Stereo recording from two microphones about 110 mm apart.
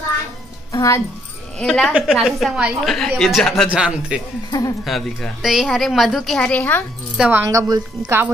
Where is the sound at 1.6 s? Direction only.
5° left (ahead or behind).